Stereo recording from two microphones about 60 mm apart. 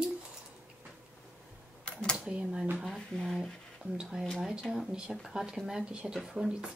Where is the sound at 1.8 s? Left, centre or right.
Centre.